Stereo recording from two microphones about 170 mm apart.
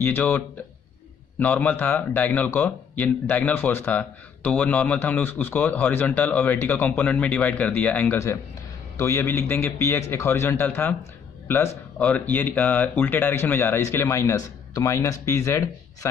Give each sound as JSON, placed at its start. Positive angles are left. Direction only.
{"t": 0.0, "sound": "a man's voice", "side_deg": 10}
{"t": 1.4, "sound": "a man's voice", "side_deg": 10}